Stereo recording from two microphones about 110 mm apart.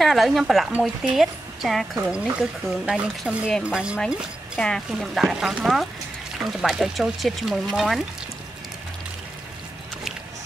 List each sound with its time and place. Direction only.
0.0 s speech: centre (ahead or behind)
4.6 s speech: 5° left (ahead or behind)